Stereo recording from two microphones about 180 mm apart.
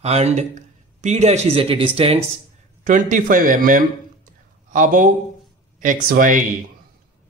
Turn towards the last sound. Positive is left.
turn(degrees=-50)  # may be behind; listen again after turning